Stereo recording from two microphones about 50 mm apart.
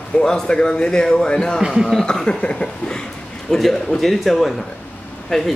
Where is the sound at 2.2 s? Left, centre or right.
Centre.